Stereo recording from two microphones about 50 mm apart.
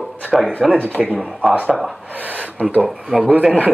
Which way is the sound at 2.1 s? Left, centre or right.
Right.